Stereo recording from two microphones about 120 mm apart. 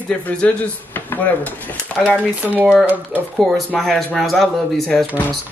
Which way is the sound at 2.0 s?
10° right (ahead or behind).